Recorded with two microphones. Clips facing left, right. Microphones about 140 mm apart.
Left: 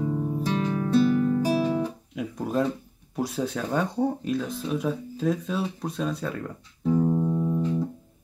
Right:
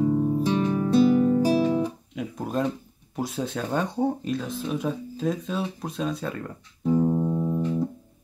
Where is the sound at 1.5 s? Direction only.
25° right (ahead or behind).